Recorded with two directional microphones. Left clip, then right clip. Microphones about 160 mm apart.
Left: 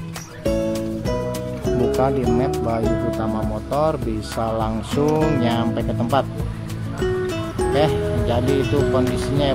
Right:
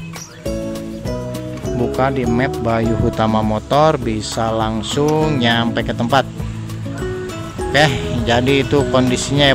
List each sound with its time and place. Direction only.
1.7 s speech: centre (ahead or behind)
3.2 s speech: 25° right (ahead or behind)
7.7 s speech: 15° right (ahead or behind)